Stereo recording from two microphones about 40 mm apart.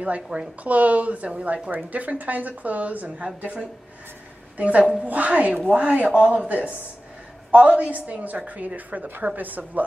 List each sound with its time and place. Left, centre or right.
0.0 s a woman's voice: right
4.6 s a woman's voice: right